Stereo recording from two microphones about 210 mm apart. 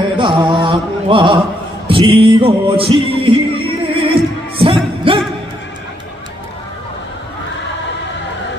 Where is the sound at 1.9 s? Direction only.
25° right (ahead or behind).